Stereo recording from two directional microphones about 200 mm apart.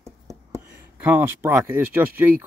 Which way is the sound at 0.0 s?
15° right (ahead or behind).